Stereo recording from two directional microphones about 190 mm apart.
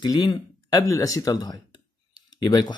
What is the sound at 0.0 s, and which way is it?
Speech, 25° left (ahead or behind).